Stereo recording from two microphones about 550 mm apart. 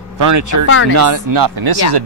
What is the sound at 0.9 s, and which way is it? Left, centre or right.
Speech, right.